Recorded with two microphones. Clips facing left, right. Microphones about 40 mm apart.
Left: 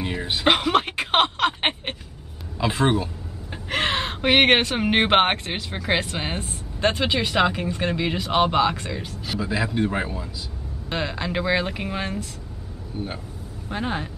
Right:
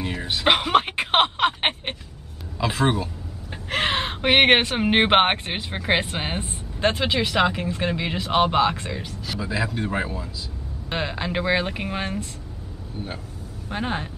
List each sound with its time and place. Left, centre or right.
0.0 s a sound: centre
2.6 s speech: centre
9.2 s speech: centre
10.9 s speech: centre
13.7 s speech: centre